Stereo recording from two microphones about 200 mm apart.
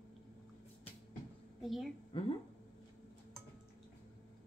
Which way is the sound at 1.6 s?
Centre (ahead or behind).